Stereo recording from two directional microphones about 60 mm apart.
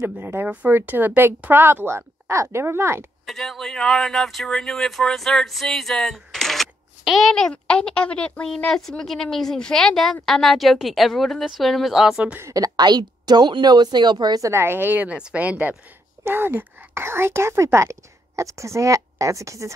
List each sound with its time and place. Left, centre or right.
0.0 s a woman's voice: right
0.5 s speech: right
0.7 s a woman's voice: right
3.3 s a woman's voice: centre
8.7 s speech: centre
12.6 s a woman's voice: right
13.3 s speech: right
14.5 s a woman's voice: right
15.0 s speech: right